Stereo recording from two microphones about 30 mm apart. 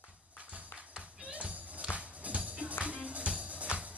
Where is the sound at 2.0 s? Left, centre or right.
Right.